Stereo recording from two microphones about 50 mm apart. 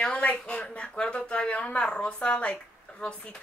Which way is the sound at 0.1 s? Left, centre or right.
Left.